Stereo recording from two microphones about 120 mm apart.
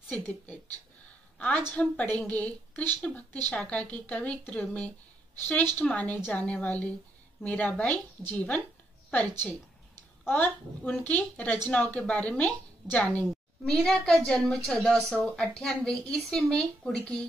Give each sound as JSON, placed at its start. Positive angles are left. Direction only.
{"t": 1.7, "sound": "a woman's voice", "side_deg": 10}